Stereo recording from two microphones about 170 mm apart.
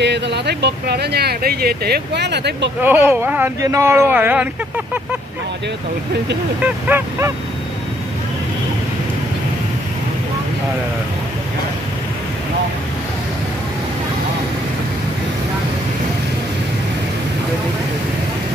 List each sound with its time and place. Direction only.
0.0 s speech: 85° right
2.8 s speech: 10° right (ahead or behind)
6.6 s speech: 15° right (ahead or behind)